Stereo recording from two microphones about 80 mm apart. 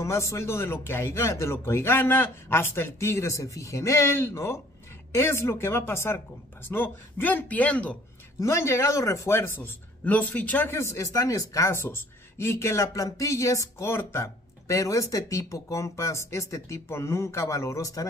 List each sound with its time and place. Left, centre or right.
0.0 s speech: left; by 8.0 s centre
8.4 s speech: left
10.0 s speech: left
10.8 s speech: left